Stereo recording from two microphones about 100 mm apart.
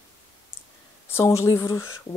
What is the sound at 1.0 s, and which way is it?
A woman's voice, 25° left (ahead or behind).